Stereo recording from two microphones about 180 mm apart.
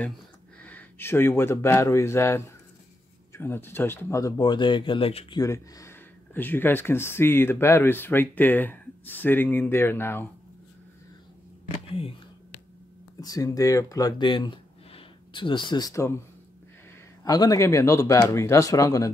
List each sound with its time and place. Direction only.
0.6 s speech: 10° left (ahead or behind); by 5.4 s 30° left (ahead or behind)
5.4 s speech: 15° left (ahead or behind)
13.2 s speech: 20° left (ahead or behind)
17.2 s speech: 20° left (ahead or behind)